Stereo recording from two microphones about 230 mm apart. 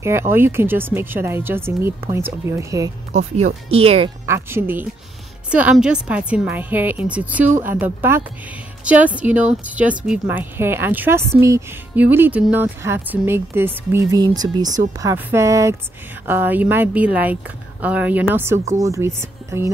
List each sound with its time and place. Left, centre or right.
0.0 s speech: centre
3.2 s speech: right
4.3 s a woman's voice: centre